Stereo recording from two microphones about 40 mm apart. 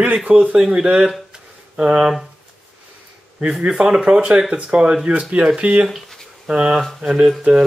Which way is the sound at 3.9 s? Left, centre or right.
Right.